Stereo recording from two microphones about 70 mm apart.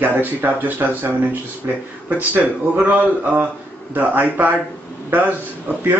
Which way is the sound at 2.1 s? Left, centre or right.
Right.